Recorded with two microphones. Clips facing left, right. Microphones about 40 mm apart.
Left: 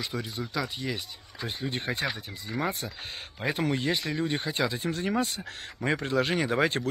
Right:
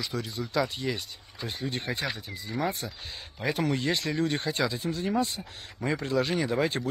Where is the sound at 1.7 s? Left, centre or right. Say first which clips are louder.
Left 1 dB; left.